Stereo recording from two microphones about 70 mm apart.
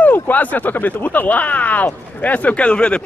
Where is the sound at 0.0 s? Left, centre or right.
Left.